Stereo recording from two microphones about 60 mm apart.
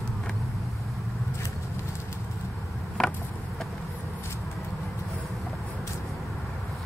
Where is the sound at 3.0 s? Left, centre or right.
Centre.